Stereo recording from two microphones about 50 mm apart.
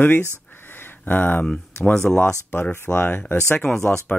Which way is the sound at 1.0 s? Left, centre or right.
Left.